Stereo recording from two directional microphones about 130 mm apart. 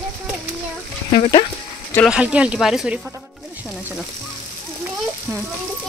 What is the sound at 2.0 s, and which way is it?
Speech, 10° right (ahead or behind).